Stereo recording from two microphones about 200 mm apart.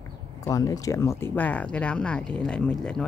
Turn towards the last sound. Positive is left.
turn(degrees=5)  # may be behind; listen again after turning